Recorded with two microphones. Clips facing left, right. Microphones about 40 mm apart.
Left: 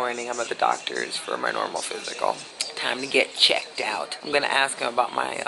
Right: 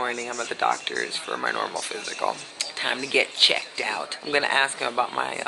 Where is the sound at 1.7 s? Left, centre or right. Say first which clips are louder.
Even; right.